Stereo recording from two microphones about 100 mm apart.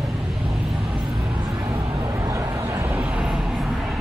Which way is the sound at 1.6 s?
30° right (ahead or behind).